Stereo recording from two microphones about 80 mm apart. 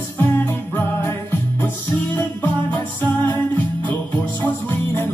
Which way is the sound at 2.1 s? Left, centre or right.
Left.